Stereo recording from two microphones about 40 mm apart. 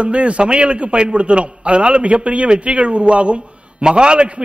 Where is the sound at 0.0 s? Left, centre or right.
Right.